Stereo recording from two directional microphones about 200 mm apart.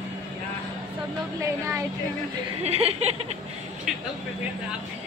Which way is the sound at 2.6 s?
30° right (ahead or behind).